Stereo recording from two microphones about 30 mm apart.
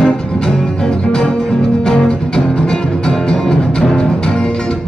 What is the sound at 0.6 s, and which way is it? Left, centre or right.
Music, left.